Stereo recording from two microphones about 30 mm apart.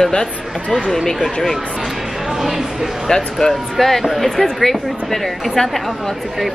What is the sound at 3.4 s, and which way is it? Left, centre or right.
Speech, centre.